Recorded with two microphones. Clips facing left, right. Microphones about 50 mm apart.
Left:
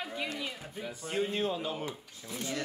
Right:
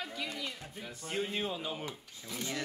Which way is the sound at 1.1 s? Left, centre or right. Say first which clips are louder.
Left 4 dB; centre.